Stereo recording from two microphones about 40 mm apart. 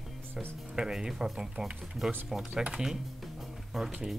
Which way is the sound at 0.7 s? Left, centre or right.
Centre.